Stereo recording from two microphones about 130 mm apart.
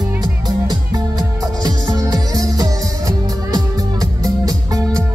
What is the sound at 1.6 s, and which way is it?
Music, 30° right (ahead or behind).